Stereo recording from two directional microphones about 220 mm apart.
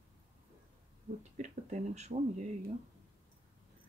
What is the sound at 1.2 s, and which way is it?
Speech, 30° right (ahead or behind).